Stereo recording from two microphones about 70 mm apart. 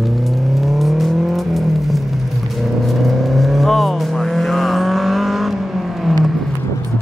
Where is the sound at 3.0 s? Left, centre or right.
Centre.